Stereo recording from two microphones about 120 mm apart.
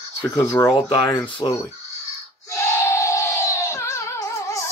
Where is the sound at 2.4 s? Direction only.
20° left (ahead or behind).